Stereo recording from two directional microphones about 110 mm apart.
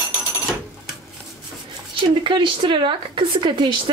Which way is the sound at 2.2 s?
50° right (ahead or behind).